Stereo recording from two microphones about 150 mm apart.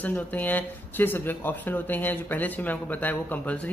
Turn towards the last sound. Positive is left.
turn(degrees=10)  # may be behind; listen again after turning